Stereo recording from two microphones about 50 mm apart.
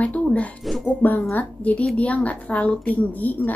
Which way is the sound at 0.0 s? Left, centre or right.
Left.